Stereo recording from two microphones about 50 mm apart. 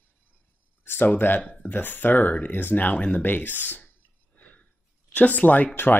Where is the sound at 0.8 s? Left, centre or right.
Left.